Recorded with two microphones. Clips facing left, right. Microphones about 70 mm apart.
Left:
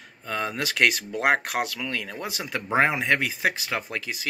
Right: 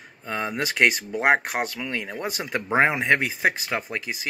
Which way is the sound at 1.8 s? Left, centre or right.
Centre.